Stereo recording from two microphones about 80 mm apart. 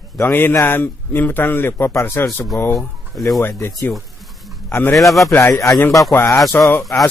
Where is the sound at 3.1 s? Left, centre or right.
Centre.